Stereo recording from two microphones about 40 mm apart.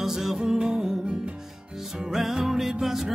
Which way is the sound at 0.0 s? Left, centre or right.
Centre.